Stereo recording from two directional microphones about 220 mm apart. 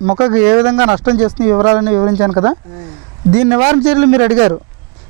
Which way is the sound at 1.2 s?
20° right (ahead or behind).